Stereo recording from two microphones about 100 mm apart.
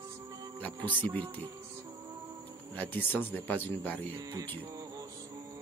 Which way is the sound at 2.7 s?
20° left (ahead or behind).